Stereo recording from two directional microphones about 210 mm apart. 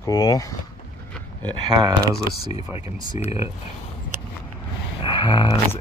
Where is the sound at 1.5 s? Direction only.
20° right (ahead or behind).